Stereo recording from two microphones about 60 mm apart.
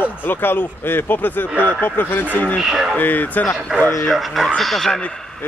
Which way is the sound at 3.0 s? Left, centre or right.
Left.